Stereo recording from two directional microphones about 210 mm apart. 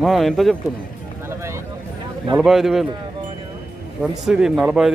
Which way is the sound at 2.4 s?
Centre (ahead or behind).